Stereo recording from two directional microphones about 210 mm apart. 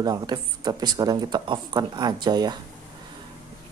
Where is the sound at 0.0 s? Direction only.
20° right (ahead or behind).